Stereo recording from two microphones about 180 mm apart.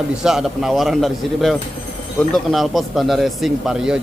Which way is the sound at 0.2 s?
5° right (ahead or behind).